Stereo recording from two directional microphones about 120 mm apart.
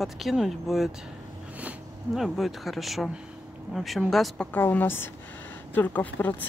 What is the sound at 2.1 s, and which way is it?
Speech, centre (ahead or behind).